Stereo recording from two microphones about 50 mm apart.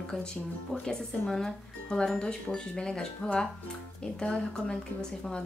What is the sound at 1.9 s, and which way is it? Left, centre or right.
A woman's voice, centre.